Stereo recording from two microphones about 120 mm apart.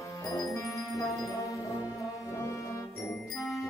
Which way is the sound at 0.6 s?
25° left (ahead or behind).